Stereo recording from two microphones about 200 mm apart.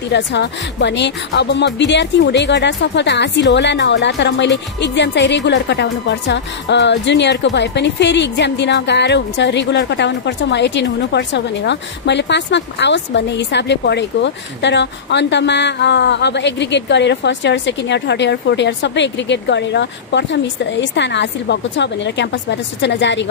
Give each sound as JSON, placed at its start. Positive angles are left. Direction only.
{"t": 0.1, "sound": "speech", "side_deg": 60}